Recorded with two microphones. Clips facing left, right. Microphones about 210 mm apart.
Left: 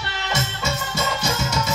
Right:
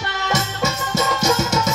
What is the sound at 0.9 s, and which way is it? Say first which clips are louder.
Music: right 8 dB; 45° right (ahead or behind).